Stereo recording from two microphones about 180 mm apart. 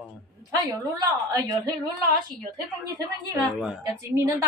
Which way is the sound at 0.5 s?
20° right (ahead or behind).